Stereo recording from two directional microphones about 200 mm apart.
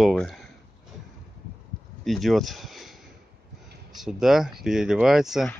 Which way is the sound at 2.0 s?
Centre (ahead or behind).